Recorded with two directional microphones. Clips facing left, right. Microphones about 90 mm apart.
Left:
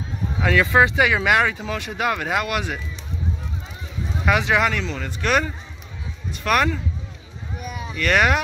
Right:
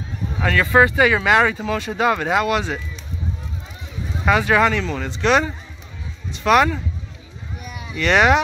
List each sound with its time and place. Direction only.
0.4 s speech: 5° left (ahead or behind)
4.3 s speech: 5° left (ahead or behind)
4.8 s speech: 5° right (ahead or behind)
6.4 s speech: 5° right (ahead or behind)
8.0 s speech: centre (ahead or behind)